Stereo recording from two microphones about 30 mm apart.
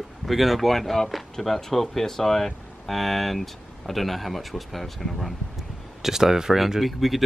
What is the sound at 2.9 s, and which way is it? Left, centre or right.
Speech, centre.